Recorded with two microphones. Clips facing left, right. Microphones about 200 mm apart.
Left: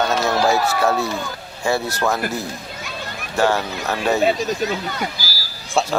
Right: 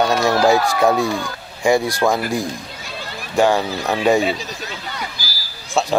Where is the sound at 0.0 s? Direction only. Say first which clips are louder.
Right 3 dB; 15° right (ahead or behind).